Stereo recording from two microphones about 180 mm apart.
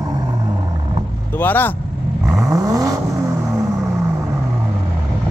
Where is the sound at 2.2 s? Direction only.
20° right (ahead or behind).